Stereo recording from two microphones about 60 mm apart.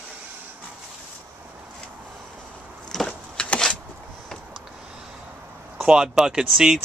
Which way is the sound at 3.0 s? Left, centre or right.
Centre.